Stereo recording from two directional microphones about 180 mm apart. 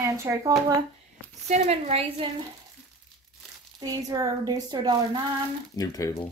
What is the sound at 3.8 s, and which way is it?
Speech, 20° right (ahead or behind).